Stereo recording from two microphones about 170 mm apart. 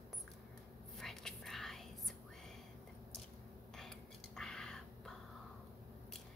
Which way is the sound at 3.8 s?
5° left (ahead or behind).